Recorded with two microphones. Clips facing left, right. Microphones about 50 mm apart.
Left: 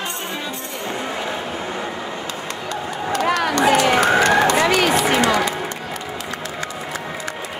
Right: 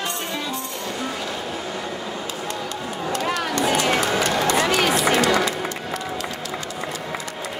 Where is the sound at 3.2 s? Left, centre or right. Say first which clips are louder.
Left 7 dB; left.